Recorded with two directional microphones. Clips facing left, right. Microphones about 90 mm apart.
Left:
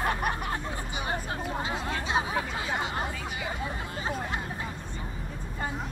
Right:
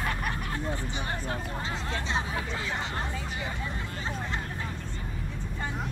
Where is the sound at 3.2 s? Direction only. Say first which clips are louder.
Left 2 dB; 15° left (ahead or behind).